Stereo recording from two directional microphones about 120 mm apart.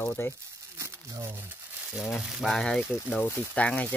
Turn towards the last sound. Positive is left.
turn(degrees=10)  # may be behind; listen again after turning